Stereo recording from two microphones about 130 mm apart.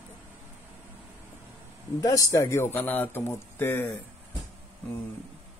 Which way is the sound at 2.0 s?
25° left (ahead or behind).